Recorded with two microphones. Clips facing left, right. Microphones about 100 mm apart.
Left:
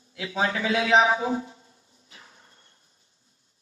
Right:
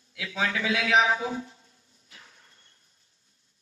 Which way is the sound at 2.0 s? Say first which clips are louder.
Left 2 dB; 25° left (ahead or behind).